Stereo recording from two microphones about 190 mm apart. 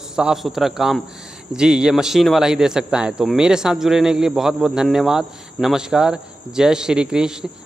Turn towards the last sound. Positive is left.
turn(degrees=-5)  # may be behind; listen again after turning